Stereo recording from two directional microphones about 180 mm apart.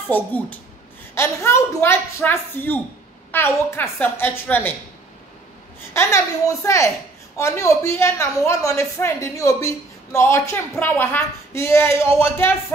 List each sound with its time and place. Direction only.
0.1 s a woman's voice: 10° left (ahead or behind)
5.9 s a woman's voice: 15° left (ahead or behind)